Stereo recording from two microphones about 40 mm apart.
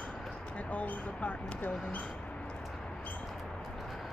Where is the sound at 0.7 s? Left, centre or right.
Left.